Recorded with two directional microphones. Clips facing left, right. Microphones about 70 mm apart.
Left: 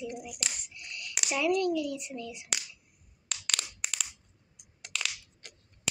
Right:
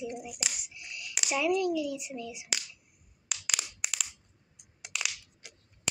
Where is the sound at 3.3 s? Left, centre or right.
Centre.